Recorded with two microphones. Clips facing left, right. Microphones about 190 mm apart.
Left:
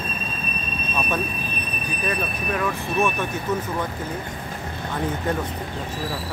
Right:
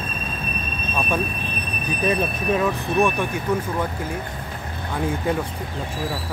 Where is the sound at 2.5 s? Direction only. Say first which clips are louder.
Right 4 dB; 20° right (ahead or behind).